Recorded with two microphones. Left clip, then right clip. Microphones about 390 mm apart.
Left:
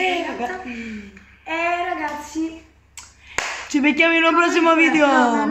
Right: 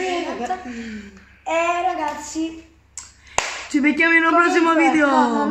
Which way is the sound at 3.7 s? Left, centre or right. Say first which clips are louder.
Even; centre.